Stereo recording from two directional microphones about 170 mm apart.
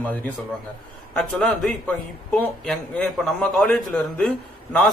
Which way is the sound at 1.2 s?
Centre (ahead or behind).